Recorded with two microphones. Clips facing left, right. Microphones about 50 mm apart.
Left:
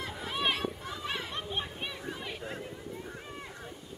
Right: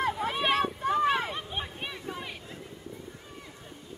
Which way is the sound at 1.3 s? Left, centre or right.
Centre.